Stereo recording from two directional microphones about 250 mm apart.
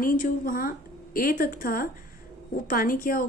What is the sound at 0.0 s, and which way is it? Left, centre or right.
A woman's voice, left.